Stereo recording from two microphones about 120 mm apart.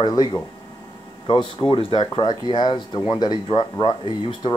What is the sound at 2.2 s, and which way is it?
Speech, 40° left (ahead or behind).